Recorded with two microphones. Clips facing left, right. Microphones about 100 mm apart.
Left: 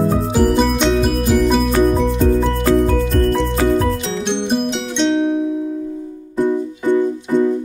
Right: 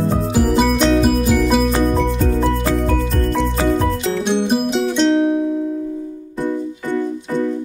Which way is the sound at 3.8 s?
5° right (ahead or behind).